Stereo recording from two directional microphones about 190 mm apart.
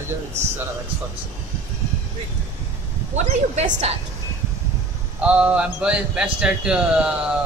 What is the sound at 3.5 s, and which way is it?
Speech, 35° right (ahead or behind).